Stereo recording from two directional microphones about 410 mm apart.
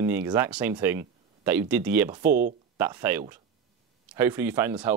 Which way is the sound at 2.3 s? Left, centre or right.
Centre.